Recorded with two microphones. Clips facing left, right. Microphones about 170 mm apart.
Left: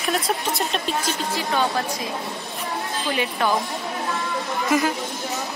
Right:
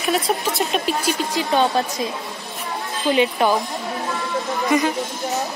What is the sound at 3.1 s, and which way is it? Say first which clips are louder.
Speech: right 6 dB; 20° right (ahead or behind).